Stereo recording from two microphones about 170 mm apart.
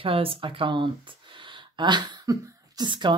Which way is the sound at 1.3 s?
30° right (ahead or behind).